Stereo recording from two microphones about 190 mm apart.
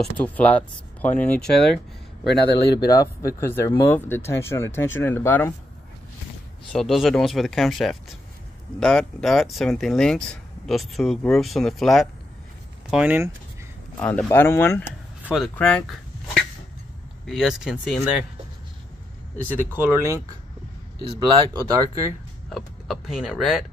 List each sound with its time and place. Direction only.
0.0 s speech: 5° left (ahead or behind)
2.9 s speech: 15° left (ahead or behind)
6.7 s speech: centre (ahead or behind)
12.9 s speech: 10° right (ahead or behind)
13.9 s speech: 5° left (ahead or behind)
15.2 s speech: centre (ahead or behind)
15.5 s dog: 5° left (ahead or behind)
17.3 s speech: centre (ahead or behind)
19.4 s speech: 10° right (ahead or behind)
21.1 s speech: 25° right (ahead or behind)
22.5 s speech: centre (ahead or behind)